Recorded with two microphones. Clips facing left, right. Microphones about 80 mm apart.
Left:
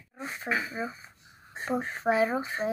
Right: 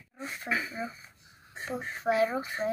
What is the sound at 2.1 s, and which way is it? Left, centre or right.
Speech, left.